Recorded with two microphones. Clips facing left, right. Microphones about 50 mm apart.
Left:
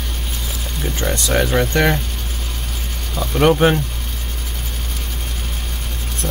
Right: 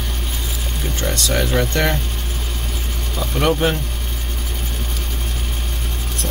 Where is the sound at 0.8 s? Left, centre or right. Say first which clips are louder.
Left 2 dB; centre.